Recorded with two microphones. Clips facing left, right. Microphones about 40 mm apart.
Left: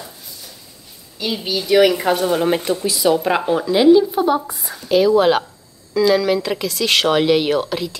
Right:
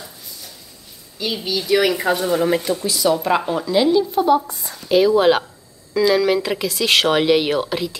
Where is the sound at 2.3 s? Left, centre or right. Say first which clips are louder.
Even; left.